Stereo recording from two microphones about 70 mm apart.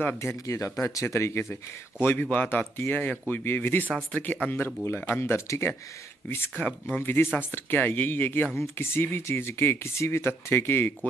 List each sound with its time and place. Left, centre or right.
0.2 s speech: left
2.0 s speech: left
6.5 s speech: centre
7.0 s speech: left